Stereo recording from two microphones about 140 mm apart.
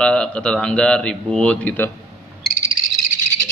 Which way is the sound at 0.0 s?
10° left (ahead or behind).